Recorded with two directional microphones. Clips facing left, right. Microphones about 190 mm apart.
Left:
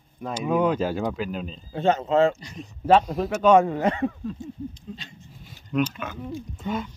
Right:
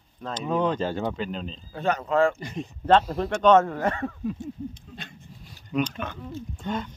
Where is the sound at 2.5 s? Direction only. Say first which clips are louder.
Left 1 dB; 5° left (ahead or behind).